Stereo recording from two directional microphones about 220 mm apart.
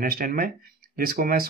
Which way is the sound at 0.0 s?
40° right (ahead or behind).